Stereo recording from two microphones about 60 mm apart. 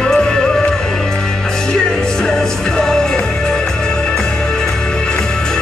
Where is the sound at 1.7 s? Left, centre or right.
Centre.